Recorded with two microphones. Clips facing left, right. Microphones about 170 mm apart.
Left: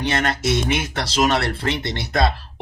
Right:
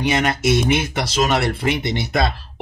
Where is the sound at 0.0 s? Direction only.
10° right (ahead or behind).